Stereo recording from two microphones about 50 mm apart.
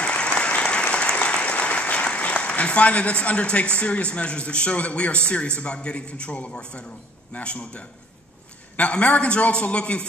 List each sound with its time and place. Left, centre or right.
0.0 s applause: left
7.3 s a man's voice: left